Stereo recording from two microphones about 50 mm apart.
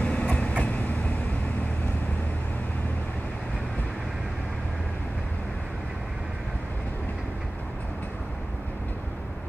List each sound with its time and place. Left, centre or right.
0.0 s train: left